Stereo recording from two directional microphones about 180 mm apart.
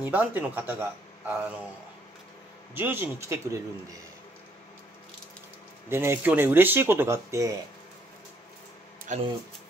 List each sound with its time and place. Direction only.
0.0 s speech: 10° right (ahead or behind)
2.7 s speech: 10° right (ahead or behind)
5.9 s speech: 15° right (ahead or behind)
9.1 s speech: 40° right (ahead or behind)